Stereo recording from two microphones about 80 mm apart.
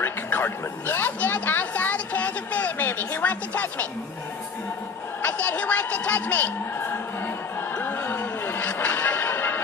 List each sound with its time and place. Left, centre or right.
0.0 s speech: left
5.2 s a man's voice: centre
7.7 s music: left